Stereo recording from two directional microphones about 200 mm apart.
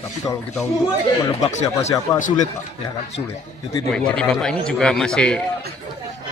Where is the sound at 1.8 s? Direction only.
40° left (ahead or behind).